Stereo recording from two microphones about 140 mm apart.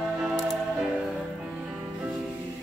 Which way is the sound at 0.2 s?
Centre (ahead or behind).